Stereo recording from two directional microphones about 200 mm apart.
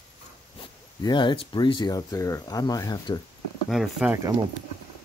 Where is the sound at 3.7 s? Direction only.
5° right (ahead or behind).